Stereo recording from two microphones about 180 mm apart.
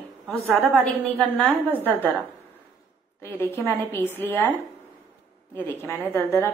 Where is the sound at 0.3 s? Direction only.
Centre (ahead or behind).